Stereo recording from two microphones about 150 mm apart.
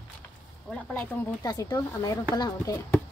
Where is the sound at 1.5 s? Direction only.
25° left (ahead or behind).